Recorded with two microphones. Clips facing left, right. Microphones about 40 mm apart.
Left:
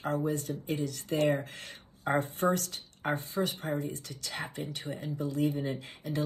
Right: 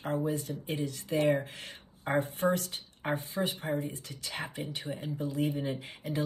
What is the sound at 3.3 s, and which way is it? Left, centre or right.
Speech, right.